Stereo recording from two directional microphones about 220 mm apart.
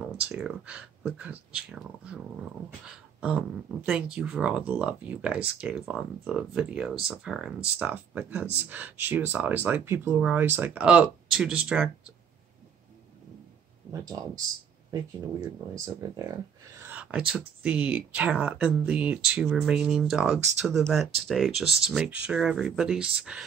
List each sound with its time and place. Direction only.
0.3 s speech: 5° right (ahead or behind)
3.2 s speech: 5° right (ahead or behind)
14.0 s speech: 15° right (ahead or behind)
15.8 s speech: 15° right (ahead or behind)
16.8 s a sound: 5° right (ahead or behind)
17.3 s speech: 5° right (ahead or behind)